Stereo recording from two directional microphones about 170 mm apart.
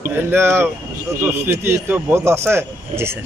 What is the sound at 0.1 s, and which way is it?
A man's voice, 15° right (ahead or behind).